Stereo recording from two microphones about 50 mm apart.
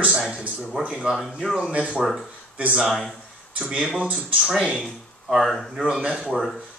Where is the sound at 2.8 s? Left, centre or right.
Centre.